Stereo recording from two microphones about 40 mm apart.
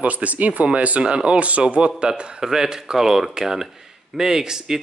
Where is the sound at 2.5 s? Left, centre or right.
Centre.